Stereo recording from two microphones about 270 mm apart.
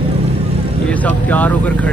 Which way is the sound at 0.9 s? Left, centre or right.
Centre.